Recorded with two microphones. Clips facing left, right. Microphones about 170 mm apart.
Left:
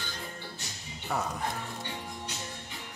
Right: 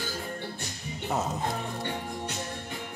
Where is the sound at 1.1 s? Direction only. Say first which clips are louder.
Right 3 dB; 20° right (ahead or behind).